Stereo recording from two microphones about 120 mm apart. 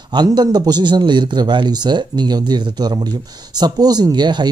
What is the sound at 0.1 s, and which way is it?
Speech, 35° right (ahead or behind).